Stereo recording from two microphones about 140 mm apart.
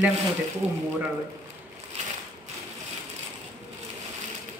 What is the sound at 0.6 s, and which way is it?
Speech, 50° right (ahead or behind).